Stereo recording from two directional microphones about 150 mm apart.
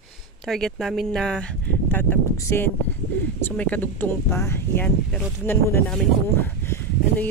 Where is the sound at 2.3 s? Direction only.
20° left (ahead or behind).